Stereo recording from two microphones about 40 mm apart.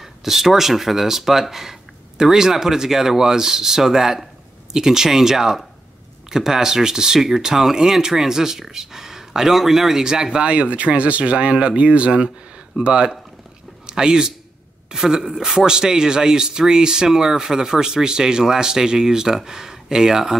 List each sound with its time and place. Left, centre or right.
0.0 s speech: centre
10.4 s a man's voice: right